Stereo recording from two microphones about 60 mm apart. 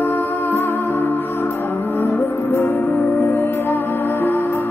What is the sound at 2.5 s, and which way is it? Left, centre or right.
Music, left.